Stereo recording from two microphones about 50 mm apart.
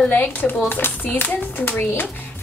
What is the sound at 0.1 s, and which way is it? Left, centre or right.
A child's voice, left.